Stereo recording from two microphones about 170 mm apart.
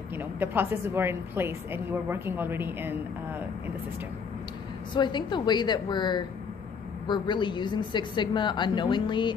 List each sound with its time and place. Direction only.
0.4 s a woman's voice: 10° right (ahead or behind)
4.9 s a woman's voice: 25° left (ahead or behind)